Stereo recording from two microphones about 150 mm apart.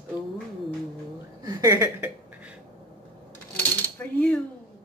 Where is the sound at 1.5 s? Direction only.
20° right (ahead or behind).